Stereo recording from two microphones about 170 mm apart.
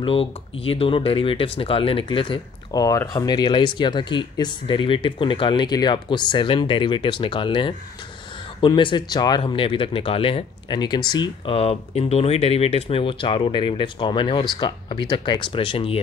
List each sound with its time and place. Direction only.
0.0 s speech: 35° left (ahead or behind)